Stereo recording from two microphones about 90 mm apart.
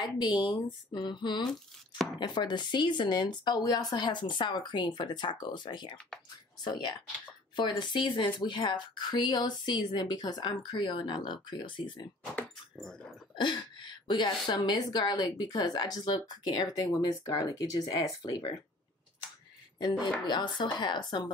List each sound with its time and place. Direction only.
0.0 s a woman's voice: 60° left (ahead or behind)
13.4 s a woman's voice: 55° left (ahead or behind)
19.8 s a woman's voice: 55° left (ahead or behind)